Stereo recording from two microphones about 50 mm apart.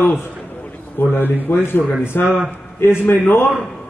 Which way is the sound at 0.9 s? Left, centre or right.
Left.